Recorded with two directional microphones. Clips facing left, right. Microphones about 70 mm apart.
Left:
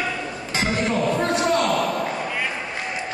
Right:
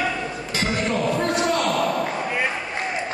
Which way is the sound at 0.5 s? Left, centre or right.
Left.